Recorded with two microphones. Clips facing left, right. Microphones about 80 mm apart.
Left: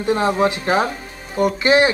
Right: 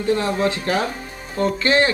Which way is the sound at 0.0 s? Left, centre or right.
Left.